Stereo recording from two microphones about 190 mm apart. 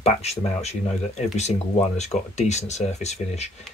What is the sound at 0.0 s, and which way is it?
Speech, 35° left (ahead or behind).